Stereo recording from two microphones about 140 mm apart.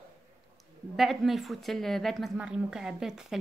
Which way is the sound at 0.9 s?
Centre (ahead or behind).